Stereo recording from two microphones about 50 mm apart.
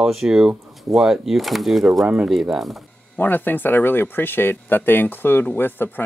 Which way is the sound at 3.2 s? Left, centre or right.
Left.